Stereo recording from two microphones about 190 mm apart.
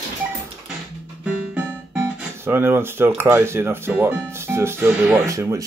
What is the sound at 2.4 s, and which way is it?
Speech, 10° right (ahead or behind).